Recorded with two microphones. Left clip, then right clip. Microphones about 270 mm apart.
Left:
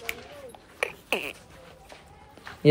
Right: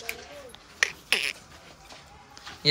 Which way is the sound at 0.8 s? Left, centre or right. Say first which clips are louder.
Right 4 dB; centre.